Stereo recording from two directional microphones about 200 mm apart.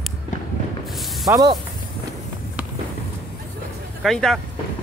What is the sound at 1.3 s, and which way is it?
Speech, 20° right (ahead or behind).